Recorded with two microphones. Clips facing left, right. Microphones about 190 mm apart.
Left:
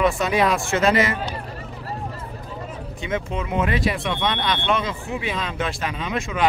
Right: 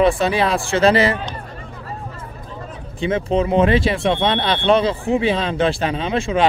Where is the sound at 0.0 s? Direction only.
30° right (ahead or behind).